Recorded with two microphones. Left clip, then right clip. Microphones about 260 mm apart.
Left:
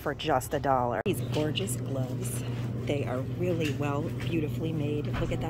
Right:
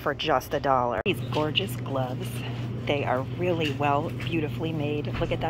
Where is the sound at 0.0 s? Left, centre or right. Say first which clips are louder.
Right 3 dB; centre.